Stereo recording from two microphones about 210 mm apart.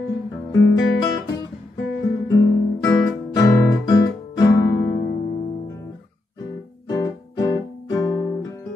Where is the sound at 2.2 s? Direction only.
15° left (ahead or behind).